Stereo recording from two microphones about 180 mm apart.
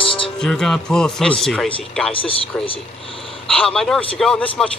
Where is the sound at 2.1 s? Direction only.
30° left (ahead or behind).